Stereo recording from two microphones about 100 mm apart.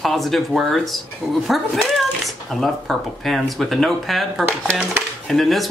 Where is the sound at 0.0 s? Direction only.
Centre (ahead or behind).